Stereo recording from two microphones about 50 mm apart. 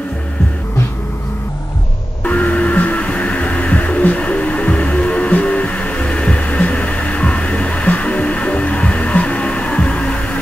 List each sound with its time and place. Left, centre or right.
2.2 s music: left